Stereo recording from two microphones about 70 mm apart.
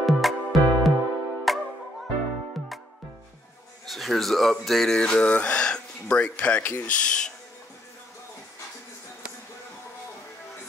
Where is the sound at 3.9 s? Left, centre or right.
Centre; by 7.0 s left.